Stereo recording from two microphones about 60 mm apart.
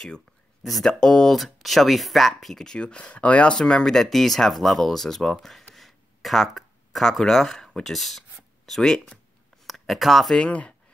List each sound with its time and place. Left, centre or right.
0.7 s speech: centre
5.8 s a sound: centre
8.6 s speech: centre
10.4 s speech: left